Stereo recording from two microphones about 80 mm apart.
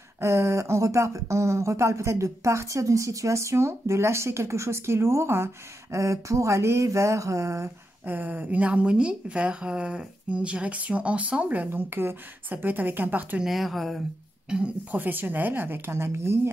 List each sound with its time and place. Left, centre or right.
0.2 s speech: right
8.0 s a woman's voice: right
13.4 s speech: centre
14.5 s a woman's voice: centre
15.0 s speech: right